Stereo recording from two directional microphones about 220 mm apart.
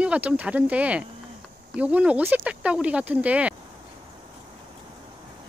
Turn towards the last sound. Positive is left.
turn(degrees=-5)  # may be behind; listen again after turning